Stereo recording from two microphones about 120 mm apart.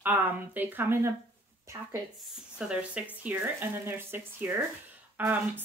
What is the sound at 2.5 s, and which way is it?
Speech, 5° right (ahead or behind).